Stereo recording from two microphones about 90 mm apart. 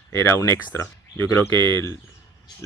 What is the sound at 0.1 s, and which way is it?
Speech, 30° left (ahead or behind).